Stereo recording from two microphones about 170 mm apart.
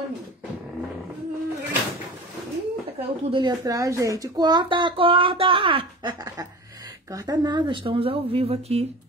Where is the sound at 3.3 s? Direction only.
25° right (ahead or behind).